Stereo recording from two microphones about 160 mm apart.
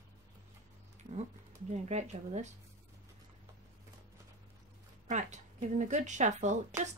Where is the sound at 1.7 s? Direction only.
45° right (ahead or behind).